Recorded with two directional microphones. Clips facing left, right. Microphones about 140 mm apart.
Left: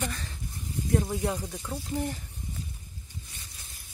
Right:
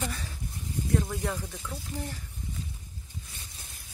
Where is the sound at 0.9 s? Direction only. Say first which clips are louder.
Left 3 dB; 20° left (ahead or behind).